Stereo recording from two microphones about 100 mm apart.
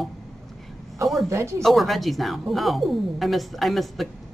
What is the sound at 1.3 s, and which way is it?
Speech, 30° right (ahead or behind).